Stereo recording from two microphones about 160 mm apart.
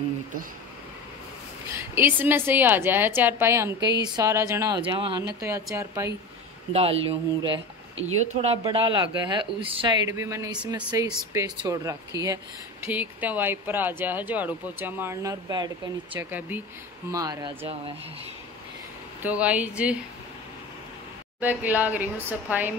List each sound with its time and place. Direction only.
1.8 s speech: 10° right (ahead or behind)
4.8 s speech: 30° right (ahead or behind)
5.4 s speech: 20° right (ahead or behind)
6.7 s speech: 40° right (ahead or behind)
10.0 s speech: 20° right (ahead or behind)
12.8 s speech: 10° right (ahead or behind)
16.1 s speech: 10° right (ahead or behind)
17.1 s speech: 25° right (ahead or behind)
19.2 s speech: 10° right (ahead or behind)
21.4 s speech: 10° right (ahead or behind)